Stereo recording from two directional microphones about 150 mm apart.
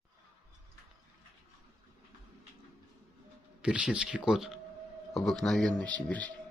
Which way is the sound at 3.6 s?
5° right (ahead or behind).